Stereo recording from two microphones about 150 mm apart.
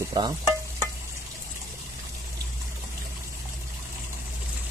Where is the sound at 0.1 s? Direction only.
30° right (ahead or behind).